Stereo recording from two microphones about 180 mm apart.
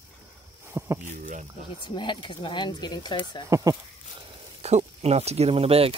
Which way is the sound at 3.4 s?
15° right (ahead or behind).